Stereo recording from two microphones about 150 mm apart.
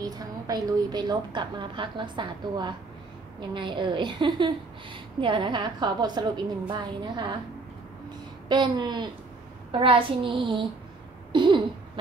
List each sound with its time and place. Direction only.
0.0 s a woman's voice: 25° right (ahead or behind)
8.5 s a woman's voice: 30° right (ahead or behind)
11.3 s a sound: 30° right (ahead or behind)